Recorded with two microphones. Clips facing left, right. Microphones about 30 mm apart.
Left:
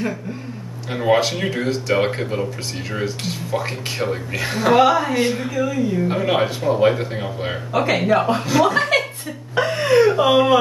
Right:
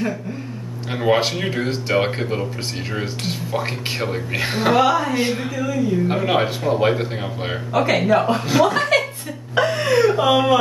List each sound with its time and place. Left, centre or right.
0.9 s speech: centre
4.7 s speech: centre
5.1 s speech: centre
5.7 s speech: centre
6.1 s speech: centre